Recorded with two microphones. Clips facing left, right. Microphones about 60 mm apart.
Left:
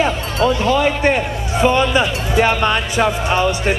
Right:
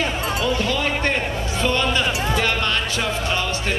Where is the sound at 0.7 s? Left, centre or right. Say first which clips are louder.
Left 7 dB; left.